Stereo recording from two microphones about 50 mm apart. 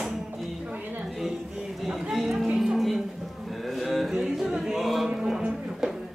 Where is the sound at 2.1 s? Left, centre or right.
Centre.